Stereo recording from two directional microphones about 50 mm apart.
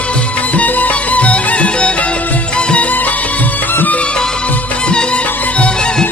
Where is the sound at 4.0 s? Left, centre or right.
Centre.